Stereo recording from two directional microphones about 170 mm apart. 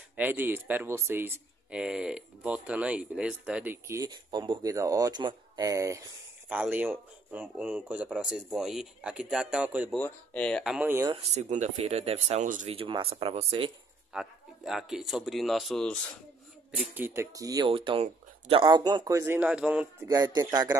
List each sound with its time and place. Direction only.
0.1 s speech: 10° right (ahead or behind)
9.9 s speech: 10° left (ahead or behind); by 11.1 s 10° right (ahead or behind)
11.3 s speech: 45° right (ahead or behind)
12.7 s speech: 30° right (ahead or behind)
14.1 s speech: centre (ahead or behind)
16.9 s speech: 15° right (ahead or behind)
20.1 s speech: 25° right (ahead or behind)